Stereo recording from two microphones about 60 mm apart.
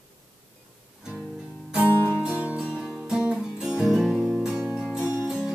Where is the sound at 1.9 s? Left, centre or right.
Left.